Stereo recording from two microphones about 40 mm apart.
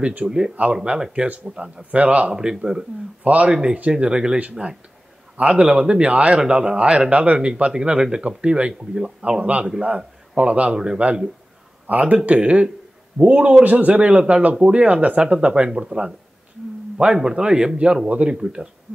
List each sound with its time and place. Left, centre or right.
0.2 s speech: centre
0.6 s a man's voice: right
0.9 s a man's voice: centre; by 3.5 s right
4.0 s a man's voice: right
4.4 s a man's voice: right; by 18.7 s centre